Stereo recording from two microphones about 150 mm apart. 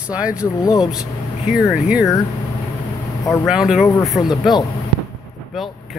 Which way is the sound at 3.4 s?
5° right (ahead or behind).